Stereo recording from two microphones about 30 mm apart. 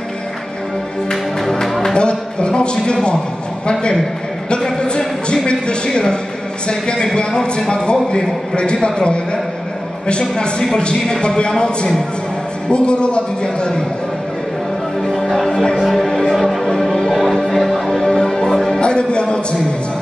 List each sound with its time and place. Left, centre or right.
1.4 s music: centre
2.0 s a sound: left
2.8 s speech: left
4.8 s speech: left
10.8 s speech: left
15.9 s music: centre
18.1 s music: left
18.8 s music: left